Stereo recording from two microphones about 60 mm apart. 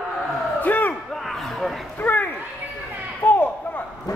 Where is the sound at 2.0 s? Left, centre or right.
Left.